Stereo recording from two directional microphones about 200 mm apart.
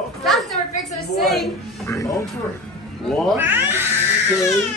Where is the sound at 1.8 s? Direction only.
15° left (ahead or behind).